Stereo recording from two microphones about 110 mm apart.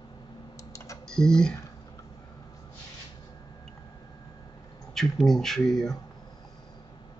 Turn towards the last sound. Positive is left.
turn(degrees=5)  # may be behind; listen again after turning